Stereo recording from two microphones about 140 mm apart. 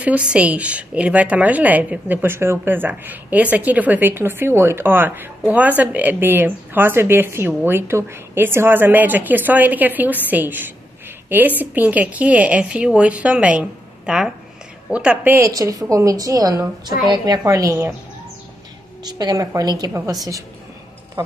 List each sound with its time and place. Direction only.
0.0 s a woman's voice: 10° right (ahead or behind)
15.5 s a woman's voice: 25° right (ahead or behind)
19.0 s a woman's voice: 30° right (ahead or behind)